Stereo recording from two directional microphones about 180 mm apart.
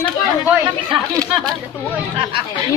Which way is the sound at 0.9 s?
20° right (ahead or behind).